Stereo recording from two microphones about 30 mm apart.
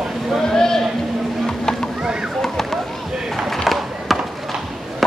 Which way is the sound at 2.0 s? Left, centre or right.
Right.